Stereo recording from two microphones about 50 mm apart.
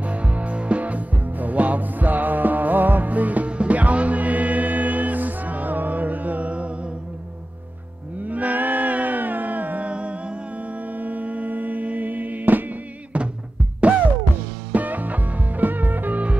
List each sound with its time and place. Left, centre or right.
0.0 s music: right
8.2 s a sound: right
14.7 s music: right